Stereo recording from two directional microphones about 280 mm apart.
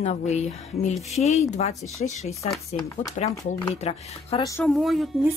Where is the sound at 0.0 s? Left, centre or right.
Left.